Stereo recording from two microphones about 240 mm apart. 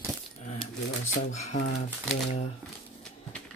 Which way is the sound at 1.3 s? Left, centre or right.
Left.